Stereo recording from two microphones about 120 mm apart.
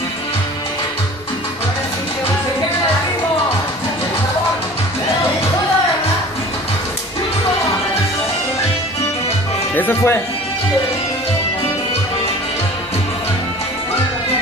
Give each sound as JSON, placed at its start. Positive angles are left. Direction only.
{"t": 9.8, "sound": "speech", "side_deg": 20}